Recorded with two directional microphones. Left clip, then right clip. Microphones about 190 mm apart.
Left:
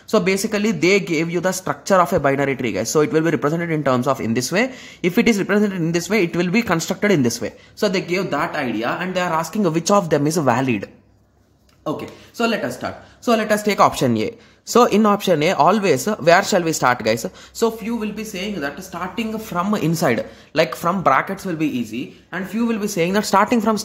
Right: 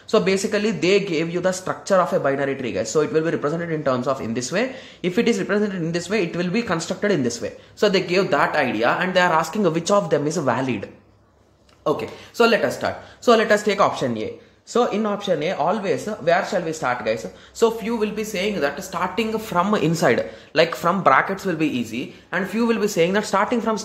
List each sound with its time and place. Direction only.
0.1 s speech: 30° left (ahead or behind)
7.9 s speech: 15° left (ahead or behind)
11.8 s speech: 10° left (ahead or behind)
13.7 s speech: 35° left (ahead or behind)
17.7 s speech: 15° left (ahead or behind)
18.5 s speech: centre (ahead or behind)
22.9 s speech: 30° left (ahead or behind)